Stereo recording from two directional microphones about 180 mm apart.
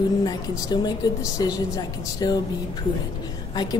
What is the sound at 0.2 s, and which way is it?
A woman's voice, 25° left (ahead or behind).